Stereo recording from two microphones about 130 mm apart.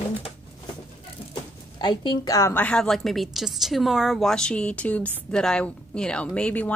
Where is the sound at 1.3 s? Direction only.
35° left (ahead or behind).